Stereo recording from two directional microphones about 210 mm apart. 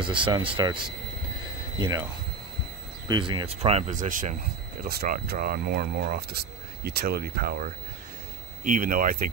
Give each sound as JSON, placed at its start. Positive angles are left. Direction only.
{"t": 0.0, "sound": "speech", "side_deg": -25}
{"t": 1.8, "sound": "speech", "side_deg": -20}
{"t": 3.1, "sound": "speech", "side_deg": -20}